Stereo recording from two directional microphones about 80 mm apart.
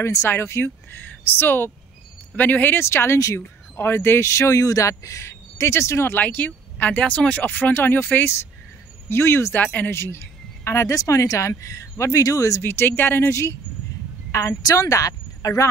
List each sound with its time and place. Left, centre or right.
0.0 s speech: left
6.1 s speech: left
11.0 s speech: left
12.6 s speech: left
14.7 s speech: left